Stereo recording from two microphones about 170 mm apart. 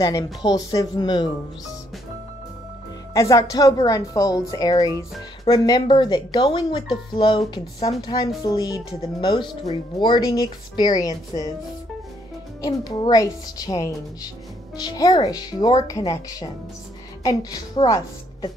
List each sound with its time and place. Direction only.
0.0 s speech: 25° left (ahead or behind)
3.1 s speech: 20° left (ahead or behind)
12.6 s speech: 20° left (ahead or behind)
17.2 s speech: 20° left (ahead or behind)